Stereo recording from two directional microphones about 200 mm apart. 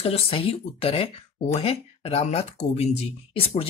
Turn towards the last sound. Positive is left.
turn(degrees=30)  # may be behind; listen again after turning